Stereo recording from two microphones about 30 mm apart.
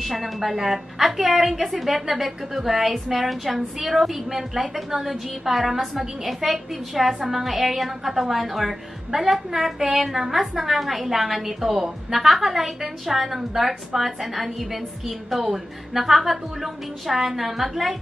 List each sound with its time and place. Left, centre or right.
0.0 s a woman's voice: centre